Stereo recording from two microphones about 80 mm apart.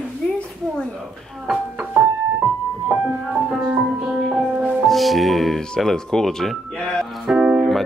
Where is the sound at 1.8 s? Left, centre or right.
Centre.